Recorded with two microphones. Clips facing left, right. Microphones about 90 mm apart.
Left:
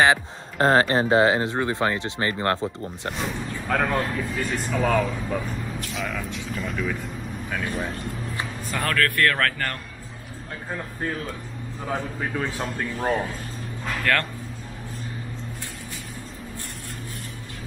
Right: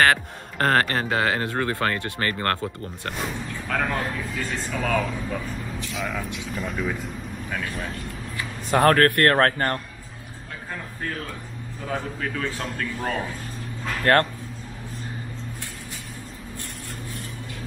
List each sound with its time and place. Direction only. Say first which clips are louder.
0.0 s speech: left 1 dB; 20° left (ahead or behind)
3.1 s speech: left 1 dB; centre (ahead or behind)
8.6 s speech: right 8 dB; 45° right (ahead or behind)
11.9 s a man's voice: left 1 dB; 10° left (ahead or behind)
14.1 s speech: right 5 dB; 35° right (ahead or behind)